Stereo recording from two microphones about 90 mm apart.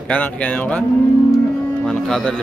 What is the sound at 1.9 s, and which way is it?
Speech, 5° left (ahead or behind).